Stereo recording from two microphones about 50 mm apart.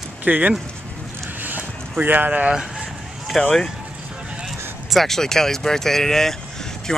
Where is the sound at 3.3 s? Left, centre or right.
Centre.